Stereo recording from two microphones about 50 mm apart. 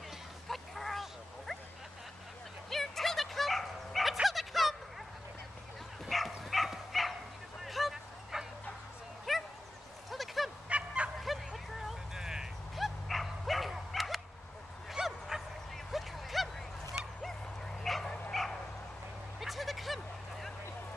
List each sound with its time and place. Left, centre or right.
0.5 s a sound: centre
2.7 s dog: centre
6.0 s dog: centre
7.6 s bow-wow: centre
10.0 s a sound: centre
10.7 s fowl: right
11.1 s vehicle: centre
12.1 s a sound: centre
12.7 s dog: centre
14.9 s bow-wow: centre
15.9 s a sound: centre
17.8 s dog: centre
18.3 s bow-wow: centre
19.4 s vehicle: centre